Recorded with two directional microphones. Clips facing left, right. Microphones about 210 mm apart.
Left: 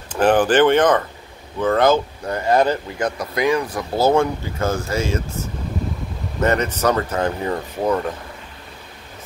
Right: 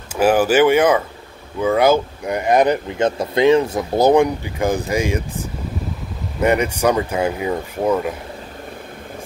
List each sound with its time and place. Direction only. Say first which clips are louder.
0.1 s speech: right 1 dB; 10° right (ahead or behind)
6.4 s speech: right 2 dB; 10° right (ahead or behind)